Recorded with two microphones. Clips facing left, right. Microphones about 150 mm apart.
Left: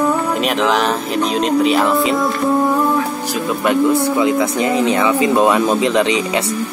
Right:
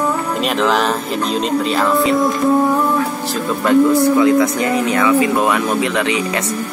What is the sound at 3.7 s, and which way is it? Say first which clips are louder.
Speech: right 4 dB; 20° left (ahead or behind).